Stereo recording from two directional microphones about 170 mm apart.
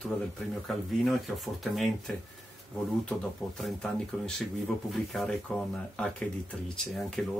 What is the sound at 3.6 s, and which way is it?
Speech, 5° left (ahead or behind).